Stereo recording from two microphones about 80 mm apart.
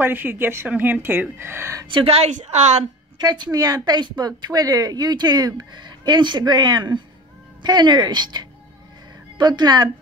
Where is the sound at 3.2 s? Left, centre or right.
Right.